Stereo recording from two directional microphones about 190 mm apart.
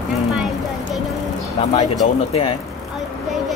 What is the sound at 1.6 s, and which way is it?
Speech, 30° left (ahead or behind).